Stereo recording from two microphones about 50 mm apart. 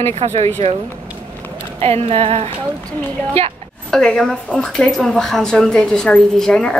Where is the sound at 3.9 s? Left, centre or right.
Centre.